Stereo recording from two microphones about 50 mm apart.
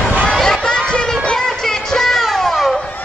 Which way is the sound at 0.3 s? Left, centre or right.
Centre.